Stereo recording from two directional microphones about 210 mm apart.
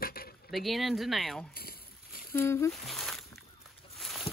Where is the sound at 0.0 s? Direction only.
45° left (ahead or behind).